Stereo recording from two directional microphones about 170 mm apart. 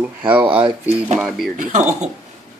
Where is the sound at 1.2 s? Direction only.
Centre (ahead or behind).